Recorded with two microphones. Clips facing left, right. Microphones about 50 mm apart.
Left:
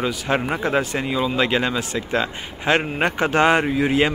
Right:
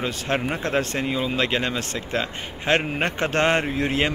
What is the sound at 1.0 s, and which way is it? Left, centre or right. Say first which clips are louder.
Speech: left 3 dB; centre.